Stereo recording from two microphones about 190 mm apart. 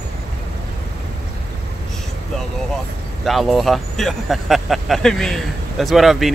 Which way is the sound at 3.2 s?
Centre (ahead or behind).